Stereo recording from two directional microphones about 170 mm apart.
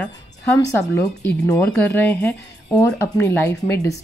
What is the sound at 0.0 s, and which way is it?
A woman's voice, 15° left (ahead or behind).